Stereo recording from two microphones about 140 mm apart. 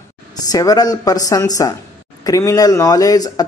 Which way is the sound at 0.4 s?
25° left (ahead or behind).